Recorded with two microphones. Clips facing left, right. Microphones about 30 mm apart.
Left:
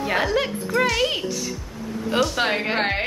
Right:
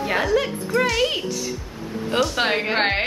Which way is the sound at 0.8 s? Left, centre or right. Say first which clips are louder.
Even; centre.